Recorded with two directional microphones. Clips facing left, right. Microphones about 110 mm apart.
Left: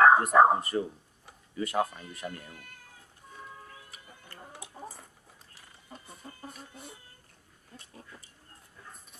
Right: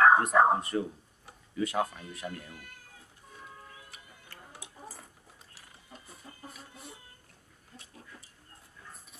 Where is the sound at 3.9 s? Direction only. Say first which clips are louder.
Left 2 dB; centre (ahead or behind).